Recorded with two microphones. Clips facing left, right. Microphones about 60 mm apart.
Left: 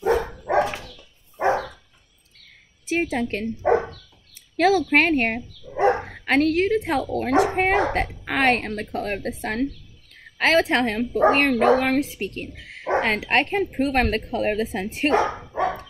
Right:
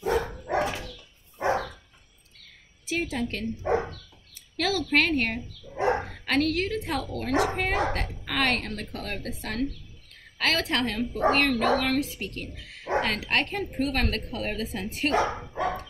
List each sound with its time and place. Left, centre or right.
0.0 s dog: left
2.9 s speech: left
4.6 s speech: left